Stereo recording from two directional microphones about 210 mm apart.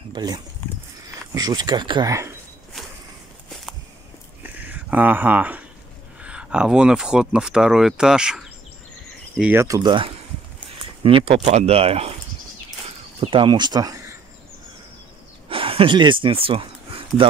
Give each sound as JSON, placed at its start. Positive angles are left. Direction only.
{"t": 0.1, "sound": "speech", "side_deg": -20}
{"t": 4.4, "sound": "a sound", "side_deg": -10}
{"t": 6.2, "sound": "speech", "side_deg": -5}
{"t": 13.2, "sound": "speech", "side_deg": -25}
{"t": 15.5, "sound": "speech", "side_deg": -25}